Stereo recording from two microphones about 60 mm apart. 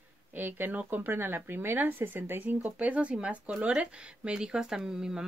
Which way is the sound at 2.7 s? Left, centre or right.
Right.